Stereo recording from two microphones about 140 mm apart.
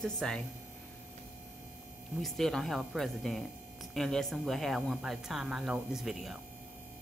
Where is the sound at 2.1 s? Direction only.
Centre (ahead or behind).